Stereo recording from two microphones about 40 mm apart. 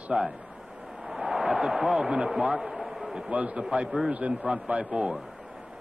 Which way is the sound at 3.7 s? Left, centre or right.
Right.